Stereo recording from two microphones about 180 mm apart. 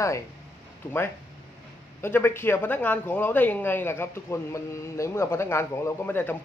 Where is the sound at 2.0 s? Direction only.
15° left (ahead or behind).